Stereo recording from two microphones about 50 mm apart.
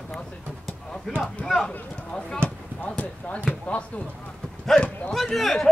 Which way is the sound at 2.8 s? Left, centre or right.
Left.